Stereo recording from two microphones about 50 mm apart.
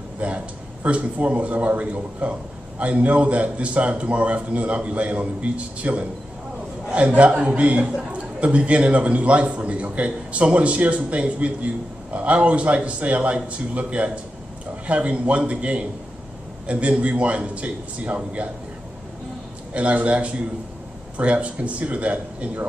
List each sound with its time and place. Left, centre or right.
0.2 s a man's voice: right
19.7 s a man's voice: right